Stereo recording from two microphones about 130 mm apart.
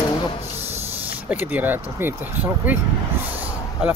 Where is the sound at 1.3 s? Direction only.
15° right (ahead or behind).